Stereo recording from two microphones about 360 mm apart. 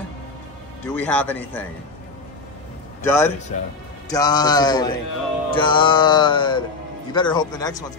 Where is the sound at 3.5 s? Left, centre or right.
Centre.